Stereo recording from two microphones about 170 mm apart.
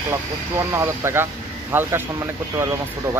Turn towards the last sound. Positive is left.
turn(degrees=-15)  # may be behind; listen again after turning